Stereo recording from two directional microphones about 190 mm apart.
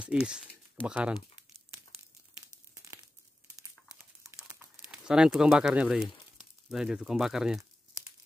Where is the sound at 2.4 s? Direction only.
15° right (ahead or behind).